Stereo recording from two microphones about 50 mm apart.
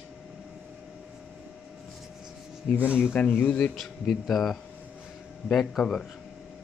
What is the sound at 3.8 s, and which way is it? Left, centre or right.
Speech, centre.